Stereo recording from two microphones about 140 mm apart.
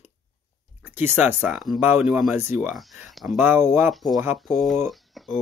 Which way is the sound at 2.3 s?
15° right (ahead or behind).